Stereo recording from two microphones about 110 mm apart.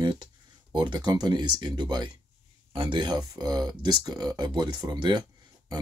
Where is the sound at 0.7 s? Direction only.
45° right (ahead or behind).